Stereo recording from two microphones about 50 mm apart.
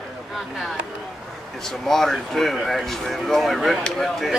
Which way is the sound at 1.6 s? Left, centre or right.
Centre.